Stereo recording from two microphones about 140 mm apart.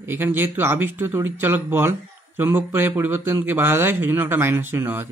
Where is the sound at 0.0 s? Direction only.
15° right (ahead or behind).